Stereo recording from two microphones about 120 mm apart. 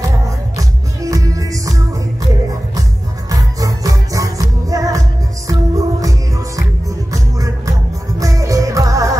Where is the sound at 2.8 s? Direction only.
30° right (ahead or behind).